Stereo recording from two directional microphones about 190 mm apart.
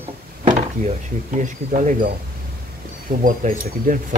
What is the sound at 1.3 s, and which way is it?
Speech, 40° right (ahead or behind).